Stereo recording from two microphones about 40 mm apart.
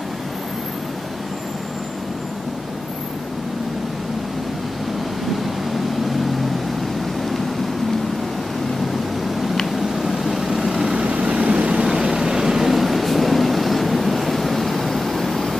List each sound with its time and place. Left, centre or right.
9.7 s vehicle: centre
11.1 s vehicle: right
11.8 s vehicle: centre